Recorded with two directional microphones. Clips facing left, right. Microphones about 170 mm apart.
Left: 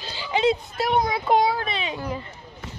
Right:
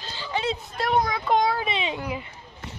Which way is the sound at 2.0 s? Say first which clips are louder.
Left 1 dB; 10° right (ahead or behind).